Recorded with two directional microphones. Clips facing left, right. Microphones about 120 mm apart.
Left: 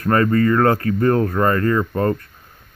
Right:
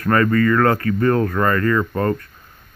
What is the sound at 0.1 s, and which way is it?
Speech, 25° left (ahead or behind).